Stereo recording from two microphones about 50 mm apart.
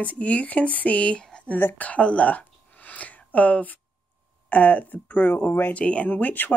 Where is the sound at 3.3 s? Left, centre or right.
Left.